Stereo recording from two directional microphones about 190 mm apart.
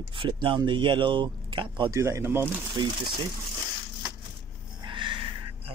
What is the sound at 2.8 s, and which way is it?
Speech, 25° right (ahead or behind).